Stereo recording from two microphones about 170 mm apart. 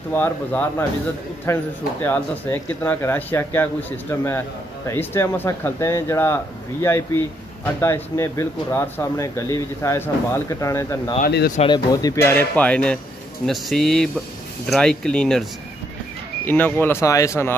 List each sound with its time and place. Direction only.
0.1 s speech: 10° left (ahead or behind)
11.2 s speech: 65° left (ahead or behind)
11.6 s speech: 25° left (ahead or behind); by 15.4 s 5° left (ahead or behind)
16.4 s speech: 10° left (ahead or behind)